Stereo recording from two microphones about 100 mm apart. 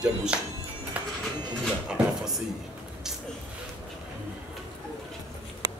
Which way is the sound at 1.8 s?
10° right (ahead or behind).